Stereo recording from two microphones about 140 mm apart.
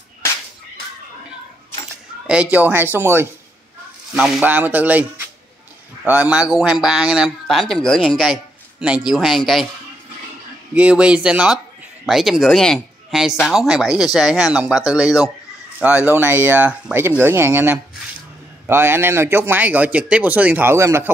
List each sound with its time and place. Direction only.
2.5 s speech: 15° right (ahead or behind)
4.1 s a man's voice: 5° right (ahead or behind)
10.7 s a man's voice: 10° right (ahead or behind)